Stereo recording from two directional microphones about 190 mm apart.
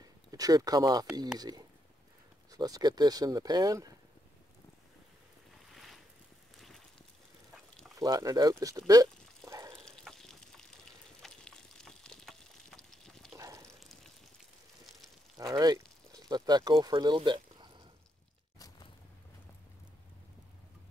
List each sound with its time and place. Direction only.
0.0 s a sound: 20° right (ahead or behind)
1.4 s speech: 20° right (ahead or behind)
5.7 s boat: centre (ahead or behind)
6.5 s fire: centre (ahead or behind)
7.9 s speech: 20° right (ahead or behind)
9.5 s water: 15° right (ahead or behind)
9.8 s water: centre (ahead or behind)
13.4 s a sound: 15° right (ahead or behind)
15.3 s speech: 20° right (ahead or behind)